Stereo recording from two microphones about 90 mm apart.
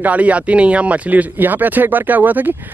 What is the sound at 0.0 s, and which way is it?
Speech, 15° right (ahead or behind).